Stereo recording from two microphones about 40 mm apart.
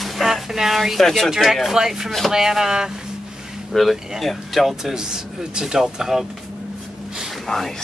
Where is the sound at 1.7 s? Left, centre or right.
Centre.